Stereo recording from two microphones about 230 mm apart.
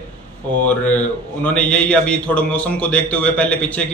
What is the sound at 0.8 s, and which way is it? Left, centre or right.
Speech, centre.